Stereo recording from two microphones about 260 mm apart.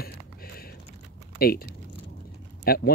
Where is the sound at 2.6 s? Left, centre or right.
Left.